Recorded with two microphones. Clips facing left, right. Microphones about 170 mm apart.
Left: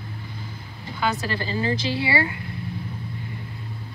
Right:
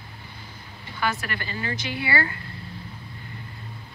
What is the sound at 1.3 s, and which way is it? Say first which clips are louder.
Speech: left 6 dB; 30° left (ahead or behind).